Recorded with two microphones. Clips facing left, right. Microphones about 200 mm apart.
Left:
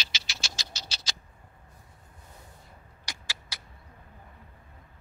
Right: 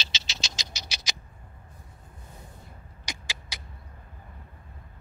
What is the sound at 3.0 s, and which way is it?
Cat, 15° right (ahead or behind).